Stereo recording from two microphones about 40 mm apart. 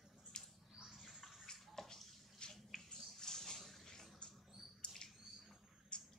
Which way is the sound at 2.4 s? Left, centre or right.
Left.